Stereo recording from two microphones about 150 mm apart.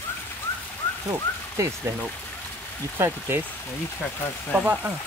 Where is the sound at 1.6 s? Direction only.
20° right (ahead or behind).